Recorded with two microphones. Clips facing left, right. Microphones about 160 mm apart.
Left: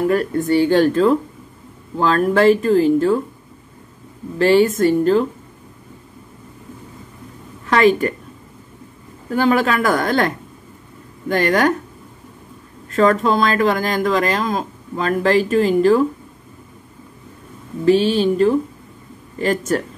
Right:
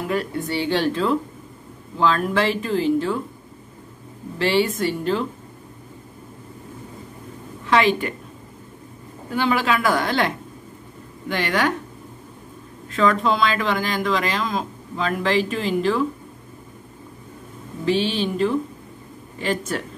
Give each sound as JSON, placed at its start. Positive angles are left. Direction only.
{"t": 0.0, "sound": "speech", "side_deg": 50}
{"t": 4.4, "sound": "speech", "side_deg": 45}
{"t": 7.6, "sound": "a woman's voice", "side_deg": 45}
{"t": 9.3, "sound": "speech", "side_deg": 45}
{"t": 12.9, "sound": "speech", "side_deg": 45}
{"t": 17.8, "sound": "speech", "side_deg": 45}